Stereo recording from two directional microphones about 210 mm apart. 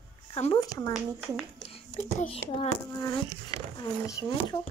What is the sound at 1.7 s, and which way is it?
A child's voice, 30° left (ahead or behind).